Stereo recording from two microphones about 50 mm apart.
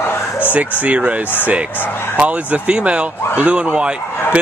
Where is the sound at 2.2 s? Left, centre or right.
Right.